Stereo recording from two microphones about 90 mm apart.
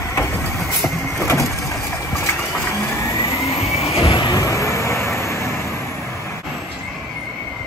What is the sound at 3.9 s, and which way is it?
Vehicle, 90° left.